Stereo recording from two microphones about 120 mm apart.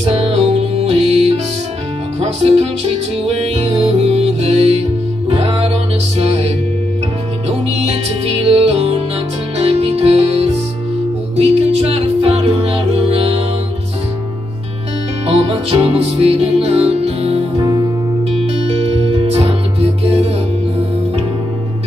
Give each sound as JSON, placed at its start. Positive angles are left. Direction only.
{"t": 0.0, "sound": "music", "side_deg": -60}
{"t": 15.2, "sound": "music", "side_deg": -55}
{"t": 17.6, "sound": "music", "side_deg": -35}
{"t": 18.3, "sound": "music", "side_deg": -55}